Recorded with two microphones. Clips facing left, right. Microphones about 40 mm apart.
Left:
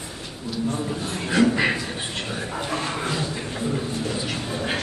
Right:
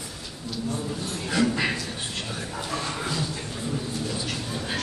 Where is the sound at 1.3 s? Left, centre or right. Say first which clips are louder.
Left 5 dB; centre.